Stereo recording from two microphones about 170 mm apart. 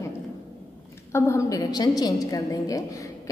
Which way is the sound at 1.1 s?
15° left (ahead or behind).